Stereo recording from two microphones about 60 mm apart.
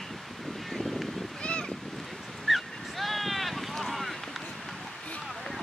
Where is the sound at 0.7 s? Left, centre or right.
Centre.